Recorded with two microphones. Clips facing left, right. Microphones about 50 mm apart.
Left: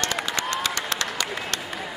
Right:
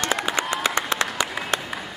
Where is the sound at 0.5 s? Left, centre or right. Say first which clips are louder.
Right 4 dB; centre.